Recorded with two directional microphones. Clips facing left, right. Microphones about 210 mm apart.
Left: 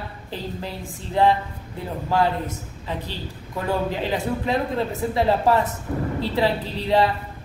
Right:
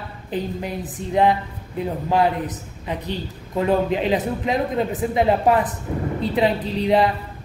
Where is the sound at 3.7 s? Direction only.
20° right (ahead or behind).